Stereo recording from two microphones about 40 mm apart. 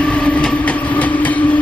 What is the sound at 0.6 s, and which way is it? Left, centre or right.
Train, left.